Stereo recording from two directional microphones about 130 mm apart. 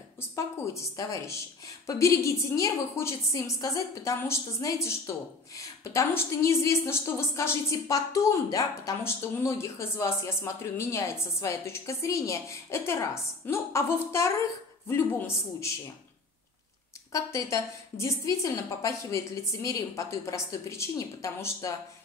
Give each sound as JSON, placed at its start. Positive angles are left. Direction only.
{"t": 0.2, "sound": "a woman's voice", "side_deg": 20}
{"t": 17.1, "sound": "a woman's voice", "side_deg": 25}